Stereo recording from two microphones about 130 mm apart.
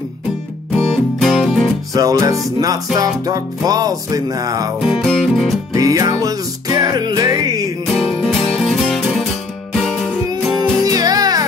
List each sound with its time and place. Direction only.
0.7 s music: centre (ahead or behind)
2.0 s music: 25° right (ahead or behind)
5.0 s music: centre (ahead or behind)
5.8 s music: 25° right (ahead or behind)
7.8 s music: 5° left (ahead or behind)
10.9 s music: 30° right (ahead or behind)